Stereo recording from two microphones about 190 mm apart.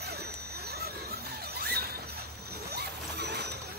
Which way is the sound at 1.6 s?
55° right (ahead or behind).